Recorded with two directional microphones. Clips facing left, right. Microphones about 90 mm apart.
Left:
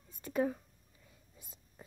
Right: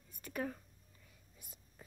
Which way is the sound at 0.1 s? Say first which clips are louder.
Left 8 dB; 25° left (ahead or behind).